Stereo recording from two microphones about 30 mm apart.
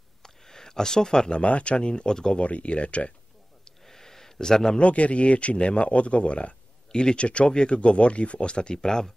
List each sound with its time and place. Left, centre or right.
0.2 s a sound: centre
1.3 s speech: left
2.3 s speech: left
3.8 s a sound: centre
4.7 s speech: left
6.9 s speech: left
8.8 s speech: centre